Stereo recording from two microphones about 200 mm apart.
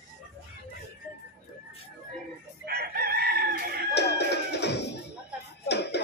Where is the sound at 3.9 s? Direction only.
55° left (ahead or behind).